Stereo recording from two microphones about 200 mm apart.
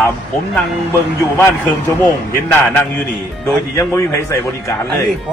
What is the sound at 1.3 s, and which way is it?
A man's voice, 15° left (ahead or behind).